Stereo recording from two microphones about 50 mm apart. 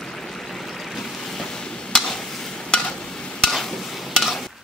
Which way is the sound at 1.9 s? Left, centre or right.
Centre.